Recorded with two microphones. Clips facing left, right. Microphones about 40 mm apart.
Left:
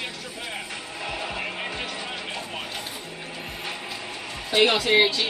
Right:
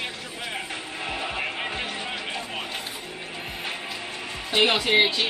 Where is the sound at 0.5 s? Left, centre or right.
Centre.